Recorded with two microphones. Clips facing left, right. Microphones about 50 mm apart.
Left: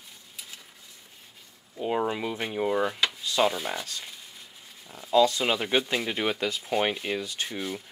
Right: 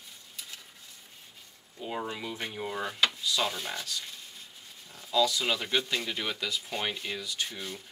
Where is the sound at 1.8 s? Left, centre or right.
Left.